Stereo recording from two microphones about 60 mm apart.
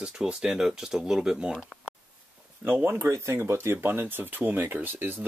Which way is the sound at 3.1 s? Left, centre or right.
Right.